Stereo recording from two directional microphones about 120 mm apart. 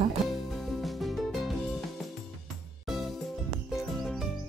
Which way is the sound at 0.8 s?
Centre (ahead or behind).